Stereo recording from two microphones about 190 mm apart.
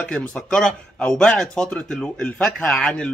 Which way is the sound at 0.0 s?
5° left (ahead or behind).